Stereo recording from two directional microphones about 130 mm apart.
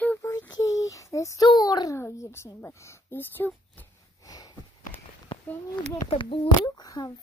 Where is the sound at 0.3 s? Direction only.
25° left (ahead or behind).